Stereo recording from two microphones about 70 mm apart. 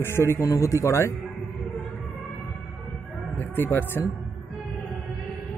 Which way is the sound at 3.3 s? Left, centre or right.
Left.